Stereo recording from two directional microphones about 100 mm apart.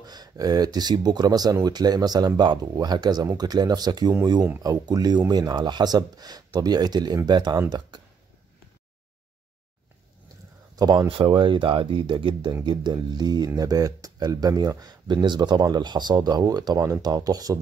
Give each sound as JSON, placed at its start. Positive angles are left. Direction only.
{"t": 0.0, "sound": "speech", "side_deg": -40}
{"t": 10.8, "sound": "speech", "side_deg": -40}
{"t": 11.1, "sound": "speech", "side_deg": -60}